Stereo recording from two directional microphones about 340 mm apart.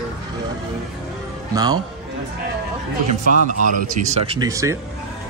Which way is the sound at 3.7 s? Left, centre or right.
Centre.